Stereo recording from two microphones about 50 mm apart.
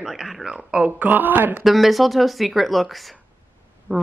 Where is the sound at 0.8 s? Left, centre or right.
Right.